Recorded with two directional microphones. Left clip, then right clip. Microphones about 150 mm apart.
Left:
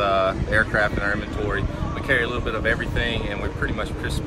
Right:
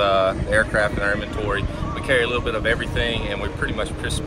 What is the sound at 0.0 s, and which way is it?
Speech, 10° left (ahead or behind).